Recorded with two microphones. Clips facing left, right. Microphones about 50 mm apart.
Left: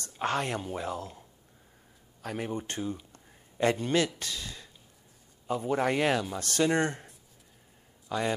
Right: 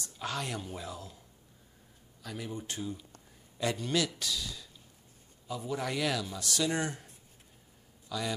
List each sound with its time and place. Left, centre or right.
0.0 s speech: left
2.2 s speech: left